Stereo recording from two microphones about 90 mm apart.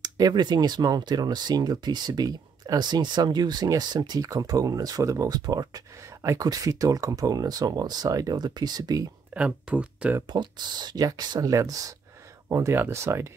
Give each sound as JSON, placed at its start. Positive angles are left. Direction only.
{"t": 0.0, "sound": "speech", "side_deg": -50}
{"t": 9.3, "sound": "speech", "side_deg": -15}
{"t": 10.3, "sound": "speech", "side_deg": -55}